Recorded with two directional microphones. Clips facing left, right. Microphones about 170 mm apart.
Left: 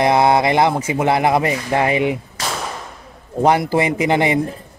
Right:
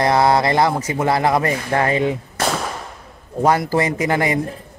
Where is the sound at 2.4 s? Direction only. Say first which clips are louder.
Right 5 dB; 55° right (ahead or behind).